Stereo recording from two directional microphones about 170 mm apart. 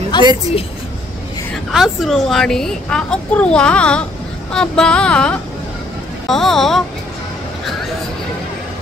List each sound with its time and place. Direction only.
0.1 s a woman's voice: 25° left (ahead or behind)
1.7 s a woman's voice: centre (ahead or behind)